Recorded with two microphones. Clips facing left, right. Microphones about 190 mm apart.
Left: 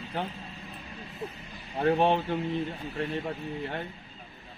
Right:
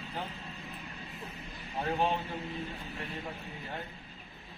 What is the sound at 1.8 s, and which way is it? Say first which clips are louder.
Speech: left 8 dB; 65° left (ahead or behind).